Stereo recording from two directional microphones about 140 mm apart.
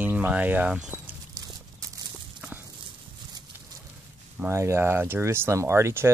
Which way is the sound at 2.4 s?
10° right (ahead or behind).